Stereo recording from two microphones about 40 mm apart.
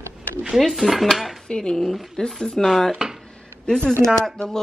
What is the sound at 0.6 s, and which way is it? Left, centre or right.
Dishes, centre.